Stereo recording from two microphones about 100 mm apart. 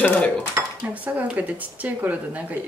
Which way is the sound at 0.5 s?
15° right (ahead or behind).